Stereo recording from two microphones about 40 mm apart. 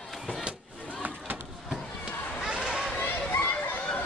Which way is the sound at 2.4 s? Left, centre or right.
Centre.